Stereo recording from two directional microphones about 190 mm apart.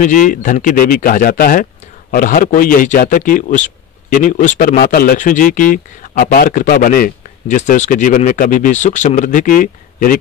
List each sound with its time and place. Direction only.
0.0 s speech: 45° left (ahead or behind)